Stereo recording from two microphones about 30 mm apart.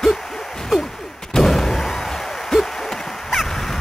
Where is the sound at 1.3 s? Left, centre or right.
Centre.